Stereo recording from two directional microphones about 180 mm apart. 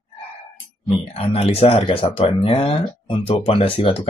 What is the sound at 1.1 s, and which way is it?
Speech, 30° left (ahead or behind).